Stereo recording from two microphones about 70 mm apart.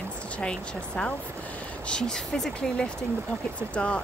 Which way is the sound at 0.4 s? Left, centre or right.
Centre.